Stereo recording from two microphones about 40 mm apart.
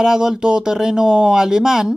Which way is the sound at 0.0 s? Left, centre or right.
Centre.